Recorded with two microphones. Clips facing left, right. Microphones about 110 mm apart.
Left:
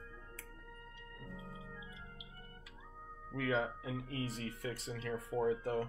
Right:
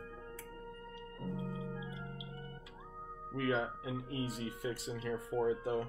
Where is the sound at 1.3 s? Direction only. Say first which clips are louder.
Right 9 dB; 30° right (ahead or behind).